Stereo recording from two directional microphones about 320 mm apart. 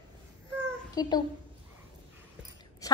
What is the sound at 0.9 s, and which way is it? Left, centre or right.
Speech, centre.